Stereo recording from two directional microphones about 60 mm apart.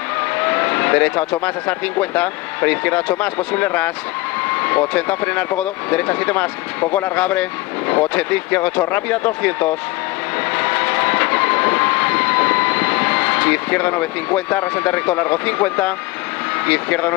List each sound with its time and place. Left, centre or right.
0.2 s vehicle: left
1.0 s speech: left
10.5 s train: left
16.6 s speech: left